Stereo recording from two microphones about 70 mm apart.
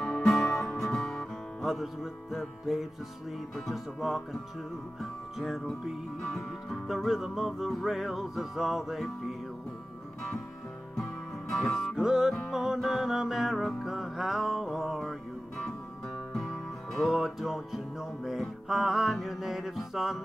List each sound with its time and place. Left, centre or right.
0.0 s music: centre
5.4 s music: centre
6.9 s music: centre
11.0 s music: centre